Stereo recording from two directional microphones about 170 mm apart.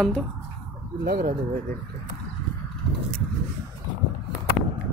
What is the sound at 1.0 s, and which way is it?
Speech, 60° right (ahead or behind).